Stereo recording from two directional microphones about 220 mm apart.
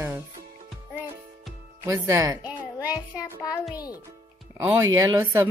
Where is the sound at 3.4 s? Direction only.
15° left (ahead or behind).